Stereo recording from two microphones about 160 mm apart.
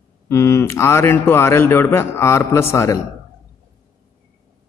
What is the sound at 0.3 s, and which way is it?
Speech, 15° left (ahead or behind).